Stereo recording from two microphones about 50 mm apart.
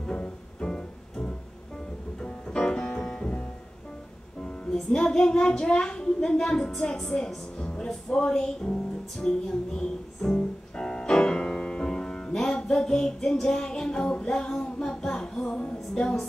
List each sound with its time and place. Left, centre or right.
0.0 s music: centre
4.4 s music: centre
7.0 s a woman's voice: centre
8.2 s music: centre